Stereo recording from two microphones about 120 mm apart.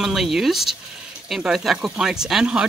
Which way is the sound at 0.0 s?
Centre (ahead or behind).